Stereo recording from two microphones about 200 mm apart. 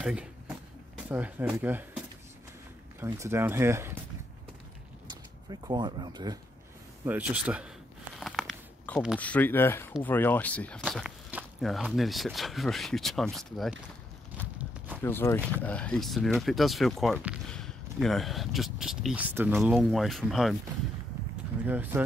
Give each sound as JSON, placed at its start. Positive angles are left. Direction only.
{"t": 0.0, "sound": "speech", "side_deg": -5}
{"t": 3.0, "sound": "speech", "side_deg": -10}
{"t": 5.5, "sound": "speech", "side_deg": -20}
{"t": 7.1, "sound": "speech", "side_deg": -5}
{"t": 8.2, "sound": "a sound", "side_deg": 0}
{"t": 9.2, "sound": "speech", "side_deg": 10}
{"t": 14.3, "sound": "walk", "side_deg": -10}
{"t": 15.0, "sound": "speech", "side_deg": 10}
{"t": 21.6, "sound": "speech", "side_deg": -10}